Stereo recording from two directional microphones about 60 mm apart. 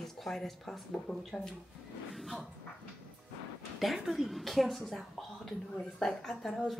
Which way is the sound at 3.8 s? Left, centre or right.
Centre.